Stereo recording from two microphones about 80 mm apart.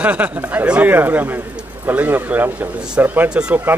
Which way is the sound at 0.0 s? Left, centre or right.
Centre.